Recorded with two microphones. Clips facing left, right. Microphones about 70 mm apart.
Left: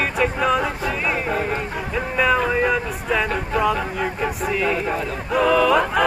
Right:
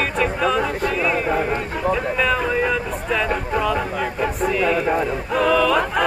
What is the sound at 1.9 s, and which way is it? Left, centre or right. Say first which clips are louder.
Speech: left 3 dB; centre.